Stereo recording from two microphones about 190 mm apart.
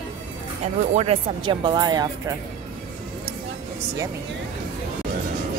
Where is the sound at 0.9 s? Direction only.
30° right (ahead or behind).